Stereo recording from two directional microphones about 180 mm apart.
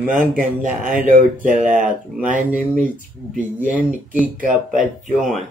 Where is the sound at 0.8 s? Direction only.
50° right (ahead or behind).